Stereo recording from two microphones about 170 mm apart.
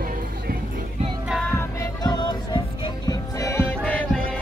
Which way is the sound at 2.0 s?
25° left (ahead or behind).